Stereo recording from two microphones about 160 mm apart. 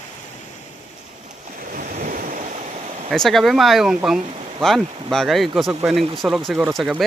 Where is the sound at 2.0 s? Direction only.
55° right (ahead or behind).